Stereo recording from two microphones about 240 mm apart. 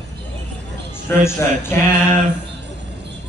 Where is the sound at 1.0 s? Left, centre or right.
Centre.